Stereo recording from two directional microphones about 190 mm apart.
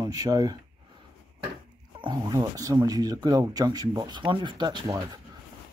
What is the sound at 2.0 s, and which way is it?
Speech, 25° right (ahead or behind).